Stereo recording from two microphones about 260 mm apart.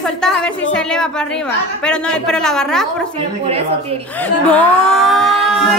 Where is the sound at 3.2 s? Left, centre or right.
Right.